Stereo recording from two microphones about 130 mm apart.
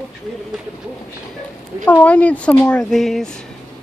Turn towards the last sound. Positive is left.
turn(degrees=0)  # may be behind; listen again after turning